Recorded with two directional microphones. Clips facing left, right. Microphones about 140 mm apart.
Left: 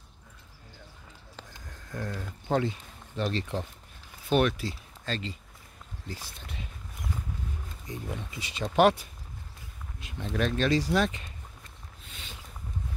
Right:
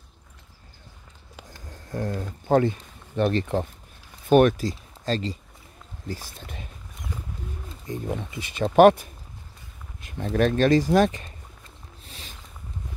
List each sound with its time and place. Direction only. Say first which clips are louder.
1.7 s speech: right 7 dB; 35° right (ahead or behind)
7.9 s speech: right 7 dB; 50° right (ahead or behind)
10.0 s speech: right 7 dB; 45° right (ahead or behind)
12.0 s a sound: right 2 dB; 35° right (ahead or behind)